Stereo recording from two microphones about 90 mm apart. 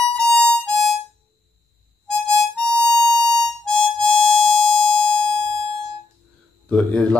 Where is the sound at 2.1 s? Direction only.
10° left (ahead or behind).